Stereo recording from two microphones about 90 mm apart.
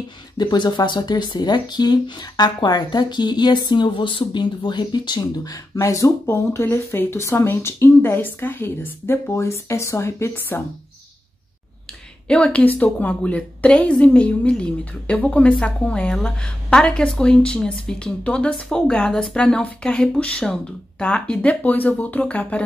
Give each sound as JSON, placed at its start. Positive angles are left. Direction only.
{"t": 0.4, "sound": "speech", "side_deg": 50}
{"t": 12.3, "sound": "a woman's voice", "side_deg": 10}